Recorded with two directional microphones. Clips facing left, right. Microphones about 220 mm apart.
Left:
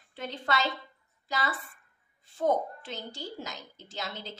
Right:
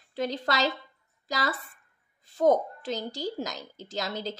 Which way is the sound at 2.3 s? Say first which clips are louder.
Right 5 dB; 40° right (ahead or behind).